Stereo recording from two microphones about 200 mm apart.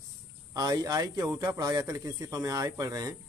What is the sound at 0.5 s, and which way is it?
Speech, 20° right (ahead or behind).